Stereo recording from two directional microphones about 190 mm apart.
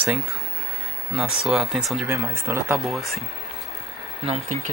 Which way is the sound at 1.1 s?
Centre (ahead or behind).